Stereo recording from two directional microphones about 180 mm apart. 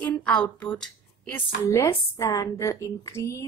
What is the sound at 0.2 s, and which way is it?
A woman's voice, 5° left (ahead or behind).